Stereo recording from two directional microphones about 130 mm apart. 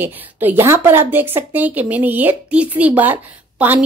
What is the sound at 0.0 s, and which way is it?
A woman's voice, 15° right (ahead or behind).